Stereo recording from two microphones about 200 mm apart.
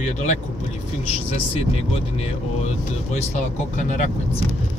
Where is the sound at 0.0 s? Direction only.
35° left (ahead or behind).